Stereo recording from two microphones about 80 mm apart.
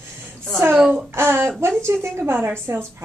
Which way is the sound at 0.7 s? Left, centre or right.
Centre.